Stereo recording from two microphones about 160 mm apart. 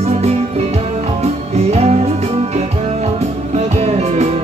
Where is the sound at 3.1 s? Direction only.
45° right (ahead or behind).